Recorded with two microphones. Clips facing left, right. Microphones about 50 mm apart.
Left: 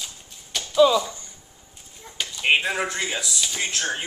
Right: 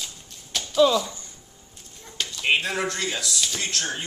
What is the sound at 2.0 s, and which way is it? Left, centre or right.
Dog, centre.